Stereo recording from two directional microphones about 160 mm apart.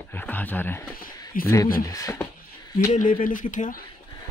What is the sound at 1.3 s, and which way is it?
Speech, 60° left (ahead or behind).